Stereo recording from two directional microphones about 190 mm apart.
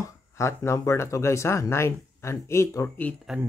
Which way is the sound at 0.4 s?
15° left (ahead or behind).